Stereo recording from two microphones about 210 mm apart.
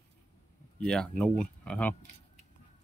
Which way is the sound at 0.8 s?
5° left (ahead or behind).